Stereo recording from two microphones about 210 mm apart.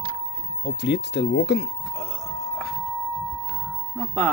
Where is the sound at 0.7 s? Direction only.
55° left (ahead or behind).